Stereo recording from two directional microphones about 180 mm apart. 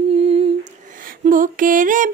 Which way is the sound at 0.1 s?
35° right (ahead or behind).